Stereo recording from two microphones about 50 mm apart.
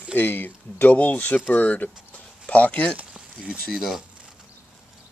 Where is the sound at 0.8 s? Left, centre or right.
Left.